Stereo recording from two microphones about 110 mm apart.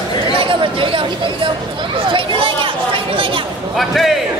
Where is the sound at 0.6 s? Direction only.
50° right (ahead or behind).